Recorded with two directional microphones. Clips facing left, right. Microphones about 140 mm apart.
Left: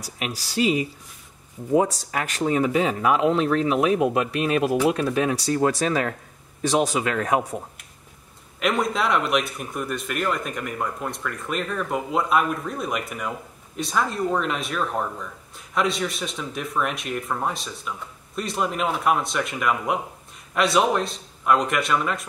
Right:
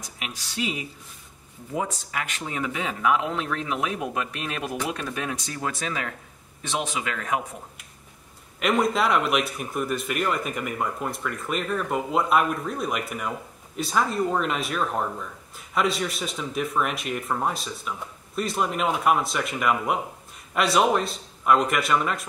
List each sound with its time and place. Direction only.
0.0 s speech: 35° left (ahead or behind)
1.8 s speech: 40° left (ahead or behind)
8.5 s speech: centre (ahead or behind)